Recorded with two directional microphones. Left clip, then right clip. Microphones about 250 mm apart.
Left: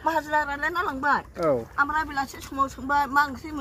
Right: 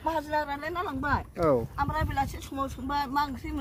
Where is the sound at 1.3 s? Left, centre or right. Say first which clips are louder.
Left 1 dB; centre.